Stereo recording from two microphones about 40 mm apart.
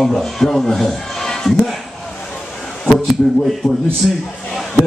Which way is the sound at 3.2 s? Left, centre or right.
Left.